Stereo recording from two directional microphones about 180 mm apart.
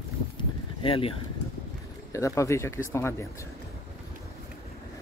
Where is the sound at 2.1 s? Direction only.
15° left (ahead or behind).